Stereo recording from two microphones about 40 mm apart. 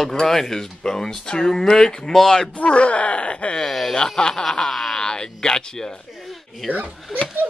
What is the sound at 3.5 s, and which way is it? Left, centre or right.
Speech, centre.